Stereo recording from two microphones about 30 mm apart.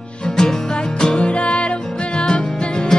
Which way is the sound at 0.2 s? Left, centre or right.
Left.